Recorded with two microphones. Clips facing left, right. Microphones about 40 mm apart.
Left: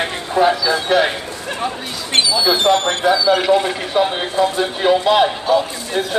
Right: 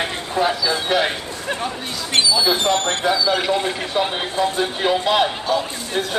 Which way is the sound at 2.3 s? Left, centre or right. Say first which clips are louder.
Left 5 dB; centre.